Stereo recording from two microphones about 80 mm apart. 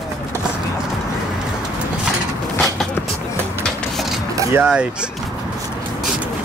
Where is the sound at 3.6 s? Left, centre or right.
Centre.